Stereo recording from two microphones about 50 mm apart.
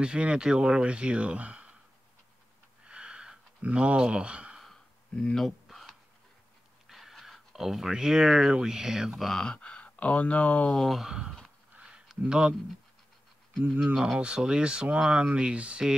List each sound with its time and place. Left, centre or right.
0.0 s speech: centre
2.8 s a sound: centre
5.3 s a sound: centre
6.9 s speech: centre
9.2 s speech: centre; by 10.8 s left
11.1 s speech: centre
11.8 s a sound: centre
13.6 s speech: centre
13.9 s speech: centre